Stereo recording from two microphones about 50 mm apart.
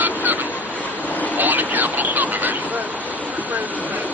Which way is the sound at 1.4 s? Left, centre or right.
Right.